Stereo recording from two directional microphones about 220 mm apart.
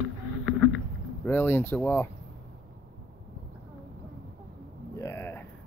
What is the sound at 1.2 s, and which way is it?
Speech, 10° left (ahead or behind).